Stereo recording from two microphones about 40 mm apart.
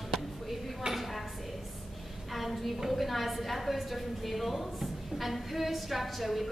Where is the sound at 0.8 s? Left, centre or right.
Centre.